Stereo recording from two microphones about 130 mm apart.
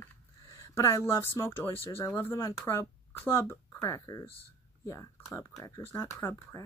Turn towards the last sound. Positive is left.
turn(degrees=20)  # may be behind; listen again after turning